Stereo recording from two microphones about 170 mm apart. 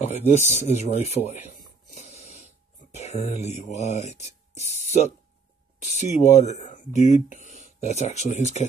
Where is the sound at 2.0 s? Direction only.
40° left (ahead or behind).